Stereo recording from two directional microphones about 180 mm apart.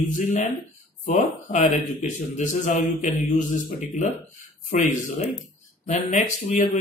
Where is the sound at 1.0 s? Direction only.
40° left (ahead or behind).